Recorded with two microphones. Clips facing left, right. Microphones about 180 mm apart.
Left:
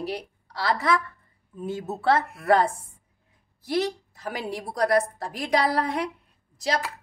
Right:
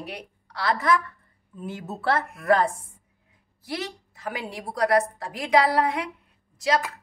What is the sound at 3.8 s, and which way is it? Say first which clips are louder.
A woman's voice: left 4 dB; 40° left (ahead or behind).